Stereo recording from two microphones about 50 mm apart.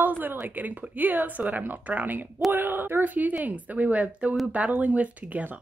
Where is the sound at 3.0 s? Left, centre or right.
Right.